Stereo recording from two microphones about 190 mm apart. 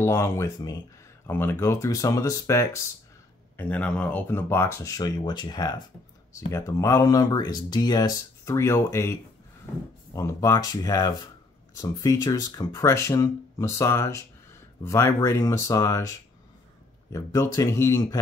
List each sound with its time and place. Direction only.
0.0 s speech: 15° left (ahead or behind)
17.1 s speech: 15° left (ahead or behind)